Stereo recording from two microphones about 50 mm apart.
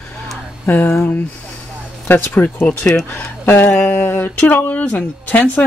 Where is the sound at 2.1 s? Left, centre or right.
Left.